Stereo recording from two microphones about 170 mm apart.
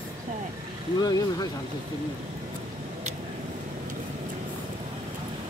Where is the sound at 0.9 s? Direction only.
20° left (ahead or behind).